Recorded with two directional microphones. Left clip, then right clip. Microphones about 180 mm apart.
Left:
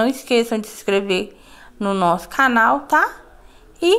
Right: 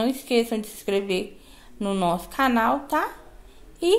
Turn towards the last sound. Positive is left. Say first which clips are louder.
# left 5 dB
turn(degrees=15)  # may be behind; listen again after turning